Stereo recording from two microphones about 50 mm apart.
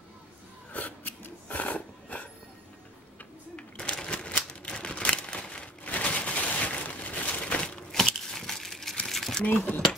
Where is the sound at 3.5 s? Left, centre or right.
Left.